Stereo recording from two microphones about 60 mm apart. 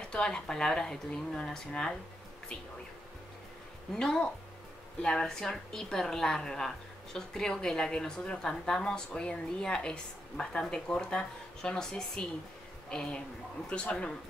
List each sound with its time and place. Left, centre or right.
0.1 s a woman's voice: centre
3.9 s a woman's voice: centre